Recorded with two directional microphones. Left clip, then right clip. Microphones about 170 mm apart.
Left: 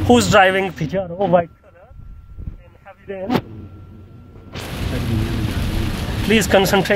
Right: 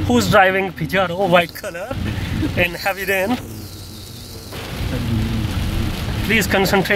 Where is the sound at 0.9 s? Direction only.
10° right (ahead or behind).